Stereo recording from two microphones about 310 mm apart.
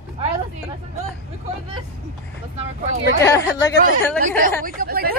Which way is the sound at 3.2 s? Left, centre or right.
Centre.